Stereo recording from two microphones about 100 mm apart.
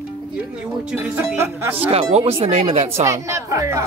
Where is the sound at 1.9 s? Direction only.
90° right.